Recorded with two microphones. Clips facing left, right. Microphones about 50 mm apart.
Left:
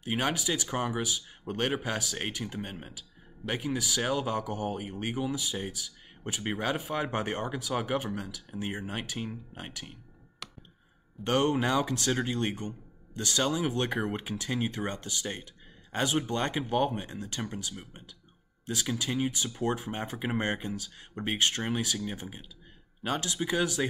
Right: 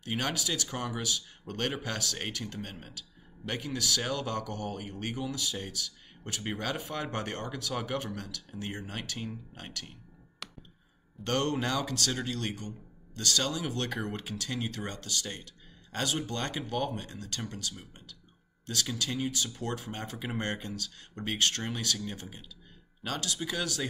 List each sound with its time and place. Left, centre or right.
0.0 s speech: centre
10.4 s a sound: centre
11.2 s speech: centre